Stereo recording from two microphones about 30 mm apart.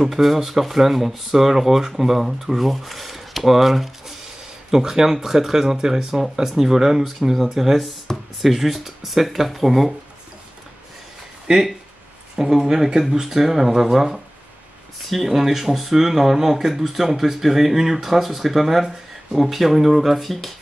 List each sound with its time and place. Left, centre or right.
0.1 s speech: centre
4.6 s speech: centre
12.4 s speech: centre
15.2 s speech: centre